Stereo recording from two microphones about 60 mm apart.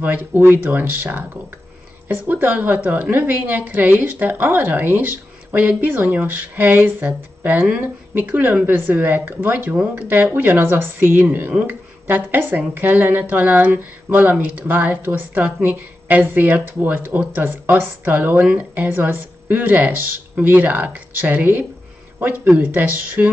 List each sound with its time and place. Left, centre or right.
0.0 s a woman's voice: right